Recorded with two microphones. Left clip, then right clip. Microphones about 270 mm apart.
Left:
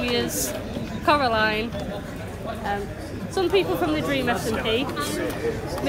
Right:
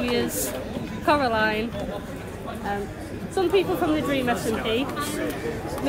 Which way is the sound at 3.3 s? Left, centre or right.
Left.